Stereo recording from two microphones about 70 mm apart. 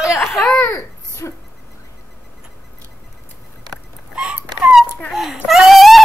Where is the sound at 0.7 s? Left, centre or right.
Left.